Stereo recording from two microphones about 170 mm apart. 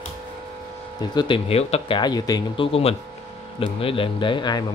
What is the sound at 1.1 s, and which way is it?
Speech, 30° left (ahead or behind).